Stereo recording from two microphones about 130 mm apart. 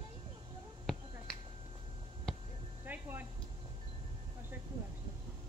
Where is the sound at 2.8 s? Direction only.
15° right (ahead or behind).